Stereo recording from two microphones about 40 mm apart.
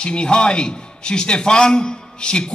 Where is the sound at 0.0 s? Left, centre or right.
Left.